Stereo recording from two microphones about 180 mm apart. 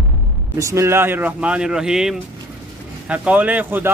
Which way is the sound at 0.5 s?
15° right (ahead or behind).